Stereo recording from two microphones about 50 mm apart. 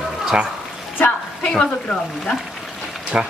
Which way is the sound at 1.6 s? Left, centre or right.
Centre.